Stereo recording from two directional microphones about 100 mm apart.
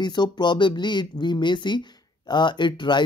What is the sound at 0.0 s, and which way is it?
Speech, 45° left (ahead or behind).